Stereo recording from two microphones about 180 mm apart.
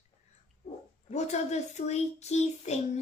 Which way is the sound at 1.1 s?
40° left (ahead or behind).